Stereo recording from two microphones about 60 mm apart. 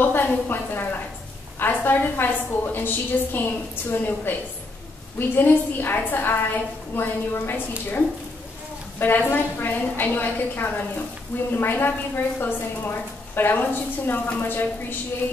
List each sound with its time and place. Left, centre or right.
0.0 s a woman's voice: left
9.0 s a woman's voice: left